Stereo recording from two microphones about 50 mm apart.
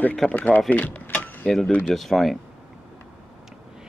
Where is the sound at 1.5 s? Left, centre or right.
Centre.